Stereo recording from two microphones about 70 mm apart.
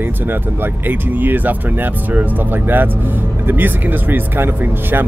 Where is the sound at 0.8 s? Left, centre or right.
Right.